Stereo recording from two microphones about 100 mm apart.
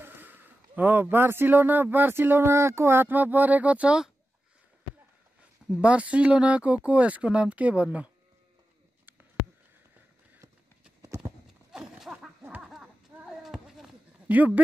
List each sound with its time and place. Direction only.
0.0 s speech: 20° right (ahead or behind)
5.7 s speech: 10° right (ahead or behind)
11.7 s a sound: 5° right (ahead or behind)
14.2 s speech: 15° right (ahead or behind)